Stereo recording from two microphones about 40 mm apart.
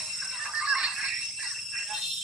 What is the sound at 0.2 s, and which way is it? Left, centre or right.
Music, centre.